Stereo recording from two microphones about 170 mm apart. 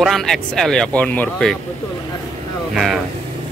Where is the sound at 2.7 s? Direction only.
Centre (ahead or behind).